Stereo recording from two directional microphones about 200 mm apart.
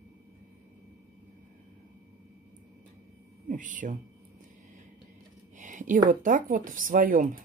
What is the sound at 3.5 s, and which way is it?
Speech, 40° right (ahead or behind).